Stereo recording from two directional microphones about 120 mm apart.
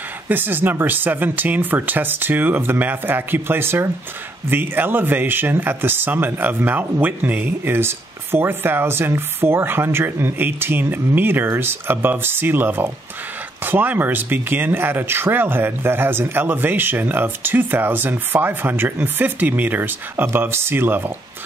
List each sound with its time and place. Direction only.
0.3 s speech: 15° right (ahead or behind)